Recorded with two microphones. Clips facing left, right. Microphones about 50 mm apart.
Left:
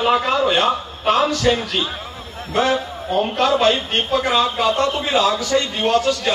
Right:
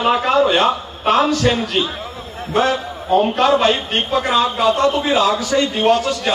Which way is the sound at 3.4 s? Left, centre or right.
Right.